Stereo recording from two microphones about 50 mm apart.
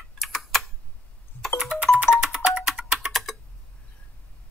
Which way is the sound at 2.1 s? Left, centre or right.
Left.